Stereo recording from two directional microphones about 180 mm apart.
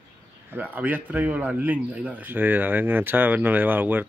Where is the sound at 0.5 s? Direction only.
10° right (ahead or behind).